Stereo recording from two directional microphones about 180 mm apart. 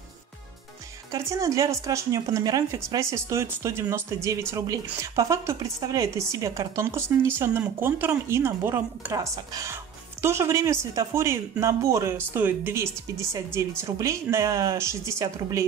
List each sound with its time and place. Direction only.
1.1 s a woman's voice: 15° right (ahead or behind)